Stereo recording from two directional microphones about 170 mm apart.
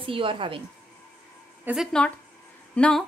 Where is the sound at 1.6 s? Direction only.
Centre (ahead or behind).